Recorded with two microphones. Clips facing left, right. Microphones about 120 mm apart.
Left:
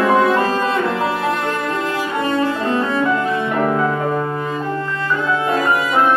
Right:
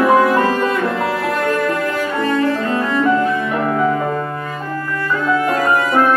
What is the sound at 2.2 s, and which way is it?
Cello, 25° left (ahead or behind).